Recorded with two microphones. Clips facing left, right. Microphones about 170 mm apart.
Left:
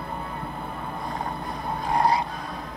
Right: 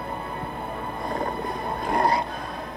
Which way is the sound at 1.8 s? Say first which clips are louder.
Even; 55° right (ahead or behind).